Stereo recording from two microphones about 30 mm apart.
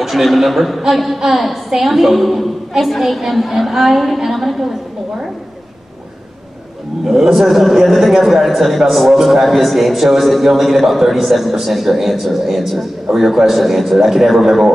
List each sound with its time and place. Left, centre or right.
0.0 s a man's voice: centre
7.1 s a man's voice: centre